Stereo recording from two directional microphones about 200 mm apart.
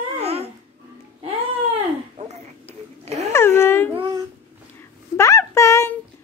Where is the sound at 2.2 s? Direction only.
35° right (ahead or behind).